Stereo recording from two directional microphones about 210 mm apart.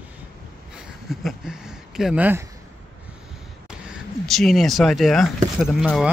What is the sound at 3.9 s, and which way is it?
Speech, centre (ahead or behind).